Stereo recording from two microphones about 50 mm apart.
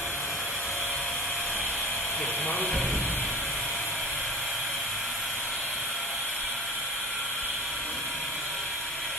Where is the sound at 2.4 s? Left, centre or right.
Left.